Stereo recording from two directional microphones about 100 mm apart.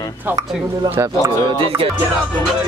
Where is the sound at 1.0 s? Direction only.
30° right (ahead or behind).